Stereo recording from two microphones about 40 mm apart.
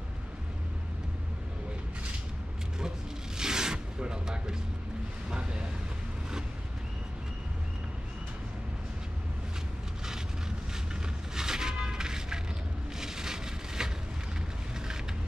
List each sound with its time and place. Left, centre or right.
3.3 s rub: centre
5.3 s vehicle: right
11.3 s music: centre
13.0 s vehicle: centre